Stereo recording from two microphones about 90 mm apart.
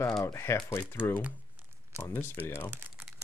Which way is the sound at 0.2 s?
35° left (ahead or behind).